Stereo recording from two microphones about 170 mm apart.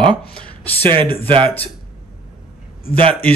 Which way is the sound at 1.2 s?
35° right (ahead or behind).